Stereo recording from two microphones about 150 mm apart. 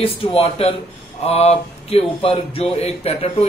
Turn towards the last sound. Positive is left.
turn(degrees=45)  # may be behind; listen again after turning